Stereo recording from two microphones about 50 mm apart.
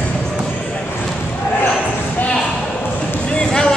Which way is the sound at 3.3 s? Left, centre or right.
Centre.